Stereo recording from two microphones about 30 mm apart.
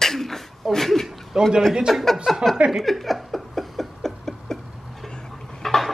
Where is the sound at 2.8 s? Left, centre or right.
Centre.